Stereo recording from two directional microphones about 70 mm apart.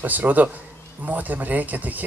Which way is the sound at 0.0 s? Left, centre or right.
Right.